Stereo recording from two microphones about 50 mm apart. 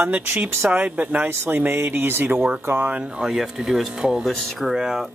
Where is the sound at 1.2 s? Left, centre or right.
Right.